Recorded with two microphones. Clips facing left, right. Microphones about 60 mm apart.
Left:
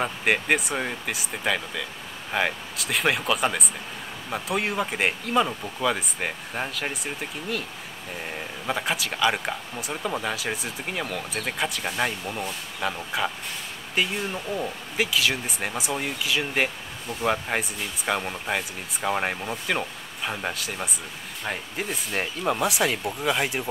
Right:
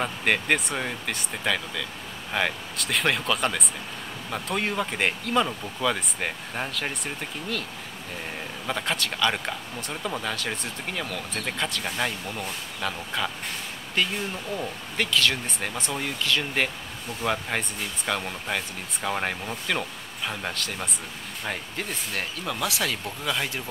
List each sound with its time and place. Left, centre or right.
0.0 s speech: centre
8.6 s speech: centre
22.1 s speech: left